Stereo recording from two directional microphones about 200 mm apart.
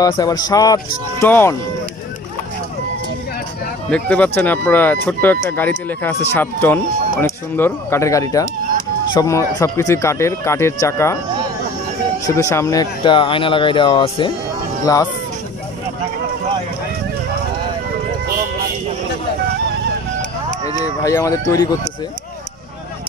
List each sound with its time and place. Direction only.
0.0 s speech: 20° left (ahead or behind)
3.9 s speech: 5° left (ahead or behind)
12.3 s speech: 15° left (ahead or behind)
21.0 s speech: 15° left (ahead or behind)